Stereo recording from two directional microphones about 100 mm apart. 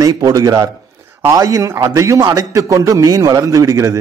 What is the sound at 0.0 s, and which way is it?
Speech, 40° right (ahead or behind).